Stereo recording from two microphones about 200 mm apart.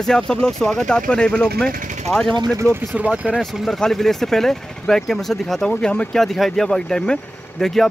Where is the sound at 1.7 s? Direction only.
40° right (ahead or behind).